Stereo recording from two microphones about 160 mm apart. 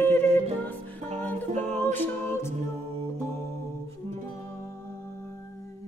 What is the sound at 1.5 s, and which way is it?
Music, 45° right (ahead or behind).